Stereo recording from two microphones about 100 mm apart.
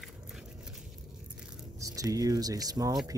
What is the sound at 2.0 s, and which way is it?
Speech, 40° right (ahead or behind).